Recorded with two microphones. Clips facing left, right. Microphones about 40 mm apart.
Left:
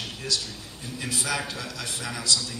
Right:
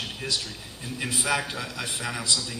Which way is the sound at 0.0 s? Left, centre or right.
Centre.